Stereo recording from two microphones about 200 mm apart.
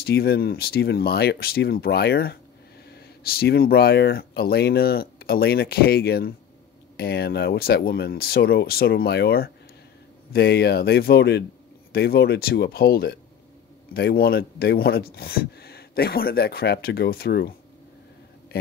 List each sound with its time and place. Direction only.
0.0 s speech: 50° left (ahead or behind)